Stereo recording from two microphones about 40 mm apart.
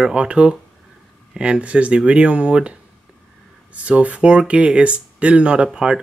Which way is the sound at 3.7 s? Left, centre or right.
Right.